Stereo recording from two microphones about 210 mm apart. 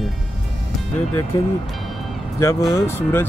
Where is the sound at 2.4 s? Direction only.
15° left (ahead or behind).